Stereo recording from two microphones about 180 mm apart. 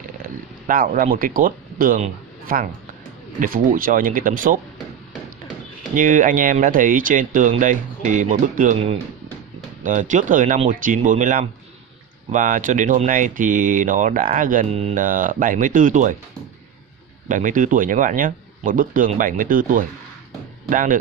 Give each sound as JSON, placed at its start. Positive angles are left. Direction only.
{"t": 0.7, "sound": "a man's voice", "side_deg": -50}
{"t": 5.9, "sound": "speech", "side_deg": -45}
{"t": 9.8, "sound": "speech", "side_deg": -45}
{"t": 14.7, "sound": "speech", "side_deg": -35}
{"t": 15.0, "sound": "speech", "side_deg": -50}
{"t": 17.3, "sound": "speech", "side_deg": -45}